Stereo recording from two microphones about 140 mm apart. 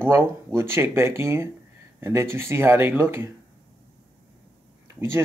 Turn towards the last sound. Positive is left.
turn(degrees=-15)  # may be behind; listen again after turning